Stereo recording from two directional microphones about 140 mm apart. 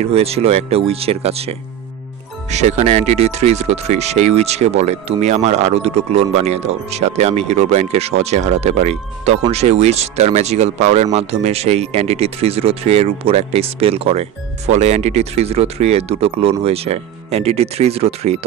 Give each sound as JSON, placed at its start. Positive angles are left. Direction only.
{"t": 0.0, "sound": "speech", "side_deg": -45}
{"t": 2.5, "sound": "speech", "side_deg": -55}